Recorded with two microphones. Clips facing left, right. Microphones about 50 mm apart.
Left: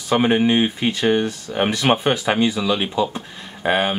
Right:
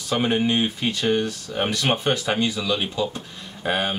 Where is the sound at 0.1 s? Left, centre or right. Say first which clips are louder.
Left 5 dB; centre.